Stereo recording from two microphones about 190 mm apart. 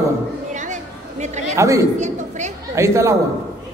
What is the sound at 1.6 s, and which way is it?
Speech, 15° right (ahead or behind).